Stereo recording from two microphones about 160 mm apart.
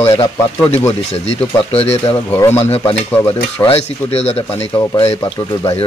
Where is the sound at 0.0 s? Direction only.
25° left (ahead or behind).